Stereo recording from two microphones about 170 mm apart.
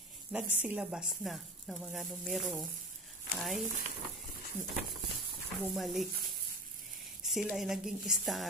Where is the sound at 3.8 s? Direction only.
45° right (ahead or behind).